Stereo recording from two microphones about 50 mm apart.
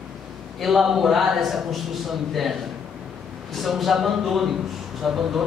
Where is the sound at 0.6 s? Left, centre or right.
Centre.